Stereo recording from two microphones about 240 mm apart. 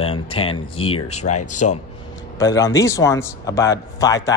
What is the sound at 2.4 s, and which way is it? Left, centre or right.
A man's voice, centre.